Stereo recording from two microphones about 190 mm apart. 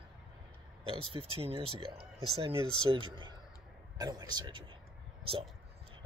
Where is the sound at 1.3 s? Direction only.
30° right (ahead or behind).